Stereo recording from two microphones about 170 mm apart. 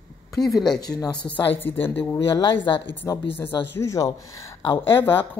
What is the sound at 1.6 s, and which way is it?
A woman's voice, 15° left (ahead or behind).